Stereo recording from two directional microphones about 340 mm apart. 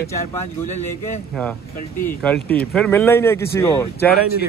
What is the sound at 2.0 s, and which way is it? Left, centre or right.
Speech, centre.